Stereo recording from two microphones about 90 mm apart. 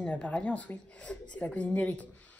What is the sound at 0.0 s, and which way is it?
A woman's voice, 15° left (ahead or behind).